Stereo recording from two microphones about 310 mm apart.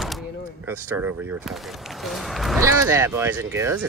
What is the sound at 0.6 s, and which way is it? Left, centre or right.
Speech, centre.